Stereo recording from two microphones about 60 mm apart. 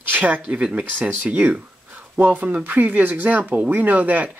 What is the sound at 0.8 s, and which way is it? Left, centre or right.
Speech, right.